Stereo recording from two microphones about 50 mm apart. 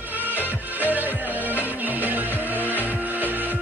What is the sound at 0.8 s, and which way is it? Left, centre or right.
Music, right.